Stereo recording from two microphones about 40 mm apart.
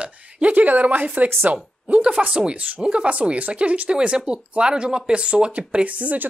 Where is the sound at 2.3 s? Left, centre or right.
Right.